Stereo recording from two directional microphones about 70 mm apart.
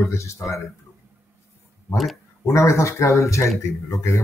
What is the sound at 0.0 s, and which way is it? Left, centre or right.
Speech, left.